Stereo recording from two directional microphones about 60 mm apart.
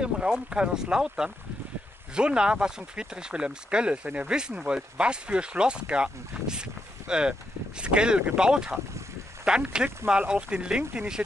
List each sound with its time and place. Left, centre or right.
0.5 s speech: centre